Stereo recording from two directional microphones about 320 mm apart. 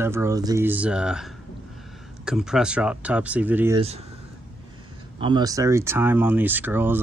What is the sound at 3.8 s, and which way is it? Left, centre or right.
Speech, centre.